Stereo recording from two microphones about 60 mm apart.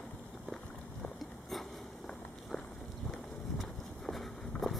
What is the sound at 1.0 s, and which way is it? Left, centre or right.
Biting, centre.